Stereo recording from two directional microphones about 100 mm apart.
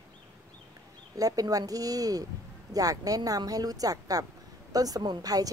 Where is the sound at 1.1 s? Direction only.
35° right (ahead or behind).